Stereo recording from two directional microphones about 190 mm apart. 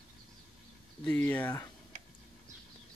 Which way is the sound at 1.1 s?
10° left (ahead or behind).